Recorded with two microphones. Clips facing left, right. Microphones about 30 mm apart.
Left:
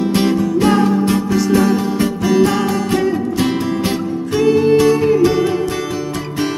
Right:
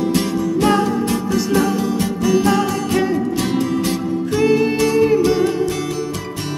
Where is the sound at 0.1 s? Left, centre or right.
Left.